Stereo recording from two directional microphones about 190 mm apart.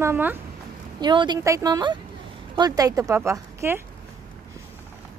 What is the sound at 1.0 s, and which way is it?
A woman's voice, 20° right (ahead or behind).